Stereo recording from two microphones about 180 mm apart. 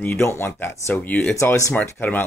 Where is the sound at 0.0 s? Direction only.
10° left (ahead or behind).